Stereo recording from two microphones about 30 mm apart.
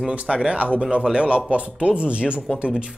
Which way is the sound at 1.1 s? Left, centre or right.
Right.